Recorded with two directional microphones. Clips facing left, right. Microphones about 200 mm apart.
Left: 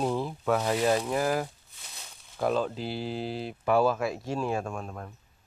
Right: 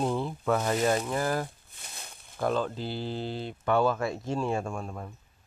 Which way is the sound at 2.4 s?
5° left (ahead or behind).